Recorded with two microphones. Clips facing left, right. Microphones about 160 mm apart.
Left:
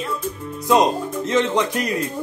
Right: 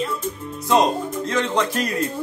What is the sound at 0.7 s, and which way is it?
Speech, 20° left (ahead or behind).